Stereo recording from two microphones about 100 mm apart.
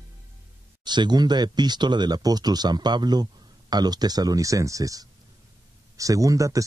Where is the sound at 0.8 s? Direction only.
45° right (ahead or behind).